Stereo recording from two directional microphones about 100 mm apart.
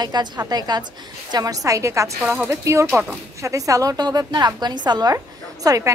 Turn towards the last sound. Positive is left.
turn(degrees=-35)  # may be behind; listen again after turning